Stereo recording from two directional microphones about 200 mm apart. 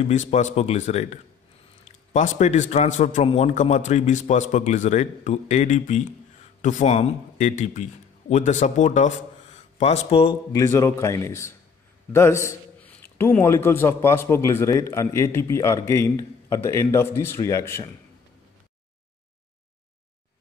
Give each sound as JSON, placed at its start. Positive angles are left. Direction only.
{"t": 0.1, "sound": "a man's voice", "side_deg": 35}
{"t": 10.5, "sound": "a man's voice", "side_deg": 15}